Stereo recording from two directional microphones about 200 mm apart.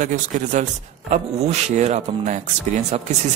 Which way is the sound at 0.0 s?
40° right (ahead or behind).